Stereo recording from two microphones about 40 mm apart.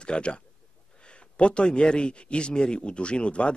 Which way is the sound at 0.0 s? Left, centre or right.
Left.